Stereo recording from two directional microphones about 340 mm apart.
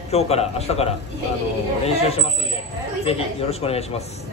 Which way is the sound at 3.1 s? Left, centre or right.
Centre.